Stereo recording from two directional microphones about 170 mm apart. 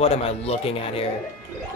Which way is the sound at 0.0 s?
35° left (ahead or behind).